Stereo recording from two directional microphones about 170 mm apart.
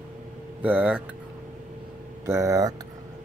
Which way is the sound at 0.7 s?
10° right (ahead or behind).